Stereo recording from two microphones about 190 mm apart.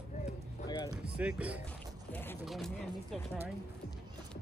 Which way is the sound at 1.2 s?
5° right (ahead or behind).